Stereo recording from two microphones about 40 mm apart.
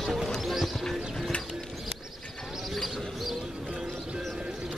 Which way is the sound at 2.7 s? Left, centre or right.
Centre.